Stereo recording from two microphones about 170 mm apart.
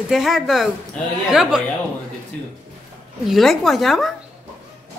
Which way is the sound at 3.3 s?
Centre (ahead or behind).